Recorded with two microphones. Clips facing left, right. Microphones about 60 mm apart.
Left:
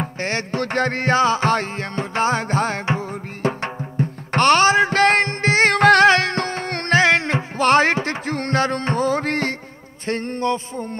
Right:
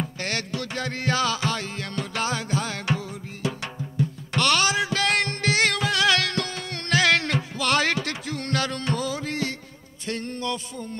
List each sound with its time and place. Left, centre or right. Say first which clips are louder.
0.2 s music: left 9 dB; left
5.8 s music: left 12 dB; left
6.0 s music: left 7 dB; left
7.0 s music: left 4 dB; left